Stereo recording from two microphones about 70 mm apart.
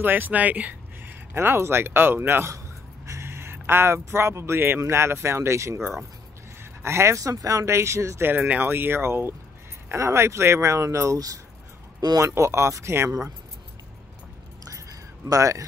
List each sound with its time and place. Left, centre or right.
0.0 s speech: right
1.3 s speech: right
8.3 s speech: right
12.0 s speech: right
12.4 s speech: right
14.7 s a sound: right